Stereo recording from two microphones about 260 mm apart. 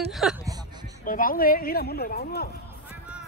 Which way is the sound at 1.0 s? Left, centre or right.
Left.